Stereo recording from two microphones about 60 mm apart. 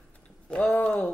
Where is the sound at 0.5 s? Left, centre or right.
Left.